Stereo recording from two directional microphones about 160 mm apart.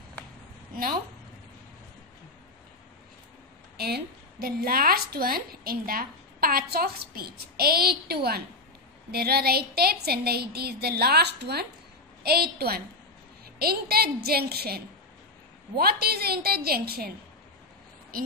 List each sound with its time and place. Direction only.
3.7 s a woman's voice: 80° right
12.2 s a woman's voice: 80° right
18.1 s a woman's voice: 65° right (ahead or behind)